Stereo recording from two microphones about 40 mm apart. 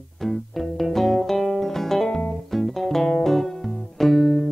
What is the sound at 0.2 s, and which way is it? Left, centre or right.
Music, centre.